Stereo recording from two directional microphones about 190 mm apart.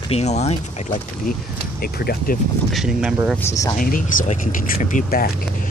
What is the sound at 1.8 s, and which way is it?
Speech, 55° left (ahead or behind).